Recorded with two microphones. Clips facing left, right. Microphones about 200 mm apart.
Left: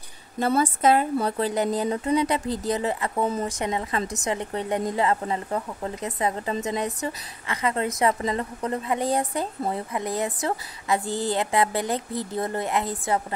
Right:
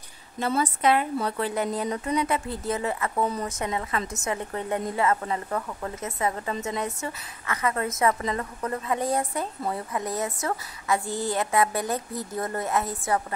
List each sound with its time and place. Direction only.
0.4 s a woman's voice: 40° left (ahead or behind)
3.0 s a woman's voice: 20° left (ahead or behind)
7.0 s a woman's voice: 30° left (ahead or behind)
11.1 s a woman's voice: 35° left (ahead or behind)
11.5 s a woman's voice: 20° left (ahead or behind)